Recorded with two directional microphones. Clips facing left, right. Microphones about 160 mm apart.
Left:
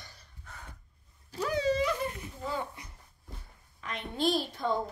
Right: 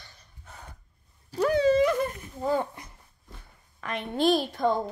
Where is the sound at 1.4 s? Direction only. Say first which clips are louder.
Right 7 dB; 60° right (ahead or behind).